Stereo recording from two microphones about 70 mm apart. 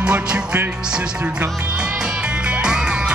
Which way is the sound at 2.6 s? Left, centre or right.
Centre.